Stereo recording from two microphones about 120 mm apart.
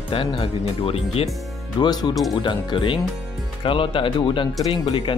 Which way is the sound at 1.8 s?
35° left (ahead or behind).